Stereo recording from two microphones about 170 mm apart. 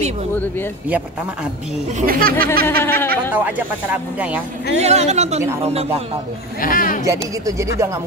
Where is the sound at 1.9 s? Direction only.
50° right (ahead or behind).